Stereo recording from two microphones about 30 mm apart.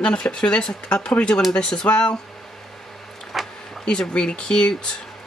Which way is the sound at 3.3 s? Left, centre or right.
Centre.